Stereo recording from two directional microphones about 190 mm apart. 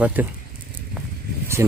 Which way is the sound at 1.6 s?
15° right (ahead or behind).